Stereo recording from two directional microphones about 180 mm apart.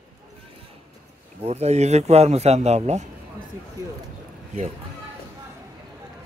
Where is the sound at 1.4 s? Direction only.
35° right (ahead or behind).